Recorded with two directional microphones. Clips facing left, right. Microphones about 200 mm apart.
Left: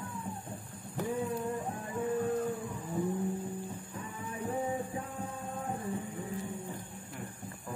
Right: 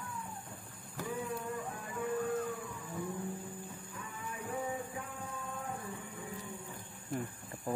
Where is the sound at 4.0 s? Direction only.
25° left (ahead or behind).